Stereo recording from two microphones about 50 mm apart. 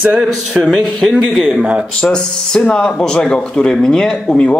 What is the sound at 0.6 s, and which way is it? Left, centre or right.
Speech, centre.